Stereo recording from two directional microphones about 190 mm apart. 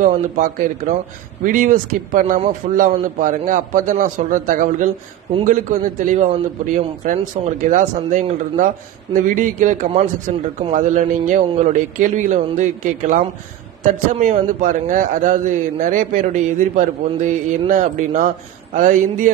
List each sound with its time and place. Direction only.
0.0 s a man's voice: 45° right (ahead or behind)